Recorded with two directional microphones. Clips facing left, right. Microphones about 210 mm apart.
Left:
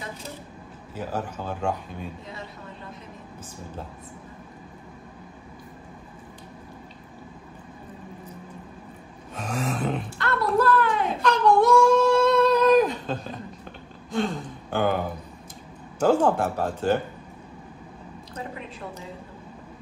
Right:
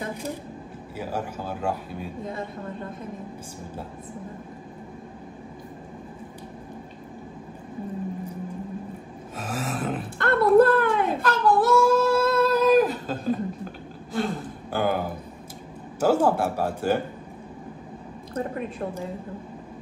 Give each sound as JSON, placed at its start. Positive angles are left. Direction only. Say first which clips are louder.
{"t": 0.9, "sound": "speech", "louder": "even", "side_deg": -10}
{"t": 2.2, "sound": "a man's voice", "louder": "right 7 dB", "side_deg": -50}
{"t": 9.3, "sound": "a sound", "louder": "left 1 dB", "side_deg": -5}
{"t": 10.1, "sound": "a sound", "louder": "right 9 dB", "side_deg": -55}
{"t": 11.2, "sound": "child singing", "louder": "left 3 dB", "side_deg": -5}
{"t": 14.1, "sound": "speech", "louder": "left 1 dB", "side_deg": -5}
{"t": 18.3, "sound": "a man's voice", "louder": "right 7 dB", "side_deg": -50}